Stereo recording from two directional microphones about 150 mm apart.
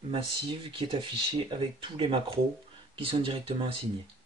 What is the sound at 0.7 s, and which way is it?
Speech, 35° right (ahead or behind).